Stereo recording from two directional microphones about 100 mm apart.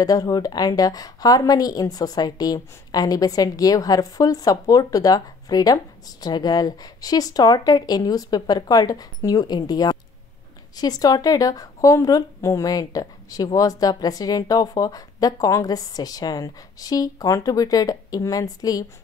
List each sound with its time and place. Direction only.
0.0 s speech: 40° left (ahead or behind)